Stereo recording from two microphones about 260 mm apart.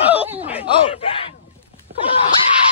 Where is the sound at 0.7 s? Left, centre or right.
Left.